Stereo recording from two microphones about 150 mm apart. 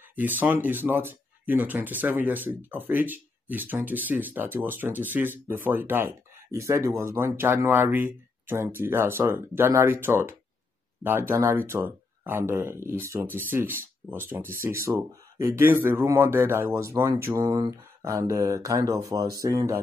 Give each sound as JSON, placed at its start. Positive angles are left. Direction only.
{"t": 0.1, "sound": "speech", "side_deg": -10}